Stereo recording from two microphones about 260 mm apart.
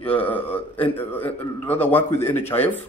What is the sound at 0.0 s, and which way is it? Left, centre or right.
A man's voice, centre.